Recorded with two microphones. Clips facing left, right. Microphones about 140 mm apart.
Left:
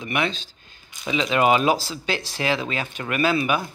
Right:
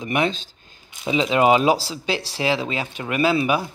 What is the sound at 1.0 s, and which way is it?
Speech, 30° right (ahead or behind).